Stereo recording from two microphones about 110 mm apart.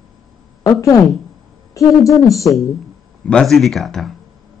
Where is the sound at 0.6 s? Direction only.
30° left (ahead or behind).